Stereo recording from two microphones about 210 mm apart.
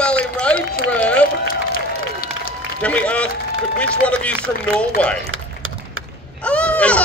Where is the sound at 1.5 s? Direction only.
45° left (ahead or behind).